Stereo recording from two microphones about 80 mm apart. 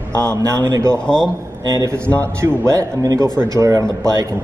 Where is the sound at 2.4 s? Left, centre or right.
Right.